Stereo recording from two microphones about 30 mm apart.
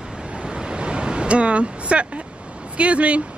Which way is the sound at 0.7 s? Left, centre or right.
Right.